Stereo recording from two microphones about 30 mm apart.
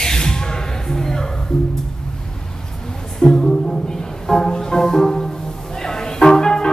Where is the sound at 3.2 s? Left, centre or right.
Left.